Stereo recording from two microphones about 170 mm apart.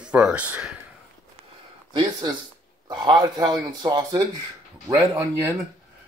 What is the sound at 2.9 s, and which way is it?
Speech, 25° right (ahead or behind).